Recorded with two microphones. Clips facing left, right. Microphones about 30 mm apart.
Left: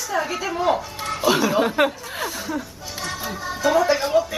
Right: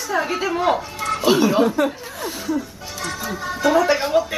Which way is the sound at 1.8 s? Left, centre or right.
Left.